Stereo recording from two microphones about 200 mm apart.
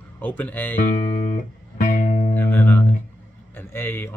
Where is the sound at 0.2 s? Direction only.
10° left (ahead or behind).